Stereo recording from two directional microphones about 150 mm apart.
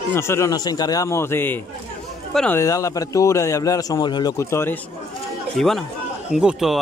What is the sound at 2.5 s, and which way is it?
A man's voice, 20° left (ahead or behind).